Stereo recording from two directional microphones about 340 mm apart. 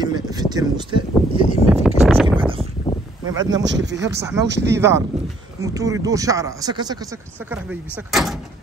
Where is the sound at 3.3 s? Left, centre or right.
Centre.